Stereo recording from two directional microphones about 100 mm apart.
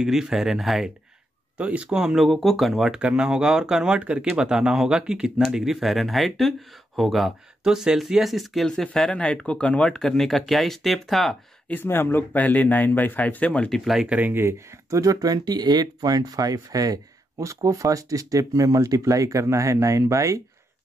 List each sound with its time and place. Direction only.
0.0 s speech: 5° right (ahead or behind)
11.6 s speech: 20° left (ahead or behind)
13.7 s speech: centre (ahead or behind)
14.0 s speech: 15° right (ahead or behind); by 20.4 s 30° right (ahead or behind)